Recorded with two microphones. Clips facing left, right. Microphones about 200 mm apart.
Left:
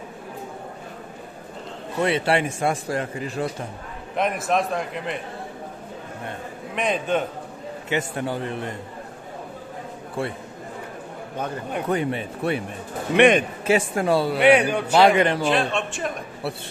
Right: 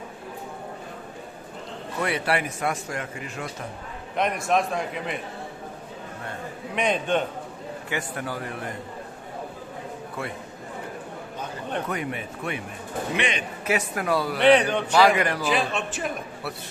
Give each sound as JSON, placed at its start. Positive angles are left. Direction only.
{"t": 2.0, "sound": "a man's voice", "side_deg": 25}
{"t": 4.1, "sound": "a man's voice", "side_deg": 0}
{"t": 6.7, "sound": "a man's voice", "side_deg": 0}
{"t": 7.9, "sound": "a man's voice", "side_deg": 25}
{"t": 11.9, "sound": "speech", "side_deg": 30}
{"t": 13.1, "sound": "a man's voice", "side_deg": 55}
{"t": 13.7, "sound": "a man's voice", "side_deg": 30}
{"t": 14.4, "sound": "speech", "side_deg": 10}
{"t": 15.0, "sound": "a man's voice", "side_deg": 25}
{"t": 15.4, "sound": "a man's voice", "side_deg": 0}